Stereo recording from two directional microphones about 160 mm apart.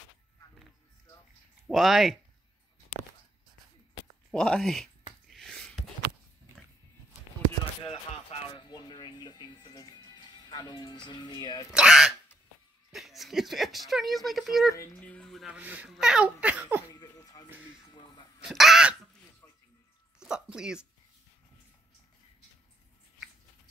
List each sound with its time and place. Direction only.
1.7 s speech: centre (ahead or behind)
4.3 s speech: 5° left (ahead or behind)
5.3 s a sound: centre (ahead or behind)
7.8 s music: 40° left (ahead or behind)
11.7 s speech: 5° right (ahead or behind)
14.7 s speech: 15° left (ahead or behind); by 16.8 s 10° right (ahead or behind)
17.0 s music: 25° left (ahead or behind)
17.9 s a sound: 30° left (ahead or behind)
18.4 s a sound: centre (ahead or behind)
20.2 s speech: 5° right (ahead or behind)